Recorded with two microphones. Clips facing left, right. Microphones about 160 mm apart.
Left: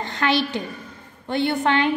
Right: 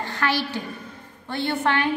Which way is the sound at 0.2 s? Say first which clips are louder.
Left 4 dB; 20° left (ahead or behind).